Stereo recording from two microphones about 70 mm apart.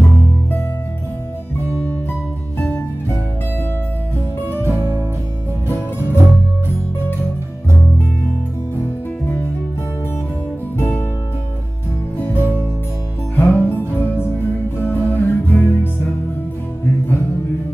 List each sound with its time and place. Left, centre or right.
4.6 s music: right
5.7 s music: left
10.8 s music: left
12.2 s music: left